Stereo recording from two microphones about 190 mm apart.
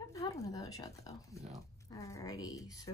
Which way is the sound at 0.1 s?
15° left (ahead or behind).